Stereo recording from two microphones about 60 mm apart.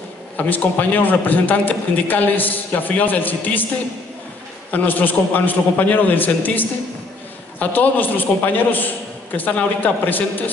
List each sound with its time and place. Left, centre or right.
0.4 s a man's voice: left
4.6 s a man's voice: left